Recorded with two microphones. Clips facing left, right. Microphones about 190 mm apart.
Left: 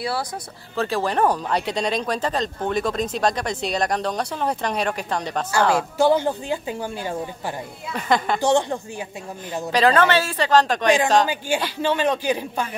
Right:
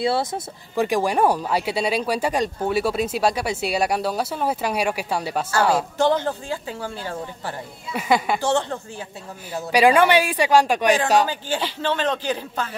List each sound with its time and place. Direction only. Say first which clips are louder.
0.0 s speech: right 5 dB; 25° right (ahead or behind); by 5.9 s 10° right (ahead or behind)
5.9 s speech: left 2 dB; 10° left (ahead or behind)
7.9 s speech: right 1 dB; 10° right (ahead or behind)
8.4 s speech: left 3 dB; 15° left (ahead or behind)
9.7 s speech: right 2 dB; 10° right (ahead or behind)
11.2 s speech: left 2 dB; 10° left (ahead or behind)